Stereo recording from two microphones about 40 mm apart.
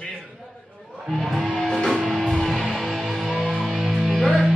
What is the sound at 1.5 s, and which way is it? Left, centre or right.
Music, centre.